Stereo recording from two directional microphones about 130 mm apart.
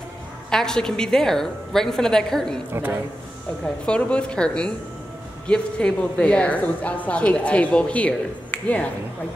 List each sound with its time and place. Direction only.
0.5 s a woman's voice: 5° left (ahead or behind)
2.7 s a man's voice: 15° right (ahead or behind)
3.6 s a woman's voice: 10° left (ahead or behind)